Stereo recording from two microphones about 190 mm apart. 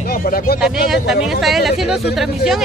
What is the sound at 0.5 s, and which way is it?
Speech, 5° right (ahead or behind).